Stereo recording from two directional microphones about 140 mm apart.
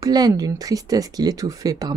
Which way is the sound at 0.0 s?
25° right (ahead or behind).